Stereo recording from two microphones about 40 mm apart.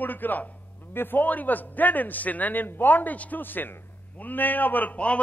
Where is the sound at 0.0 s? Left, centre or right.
Left.